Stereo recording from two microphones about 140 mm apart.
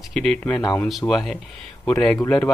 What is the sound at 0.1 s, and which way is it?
Speech, 5° left (ahead or behind).